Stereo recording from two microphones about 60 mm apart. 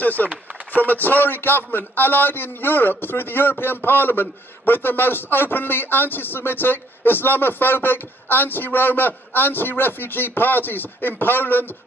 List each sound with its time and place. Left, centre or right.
0.0 s a man's voice: left